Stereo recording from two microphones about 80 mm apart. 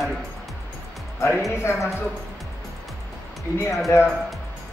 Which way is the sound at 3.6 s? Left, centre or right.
Left.